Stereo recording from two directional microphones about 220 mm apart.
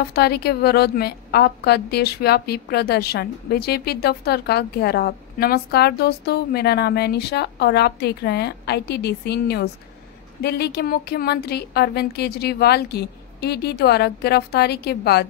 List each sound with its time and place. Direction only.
0.1 s a woman's voice: 45° left (ahead or behind)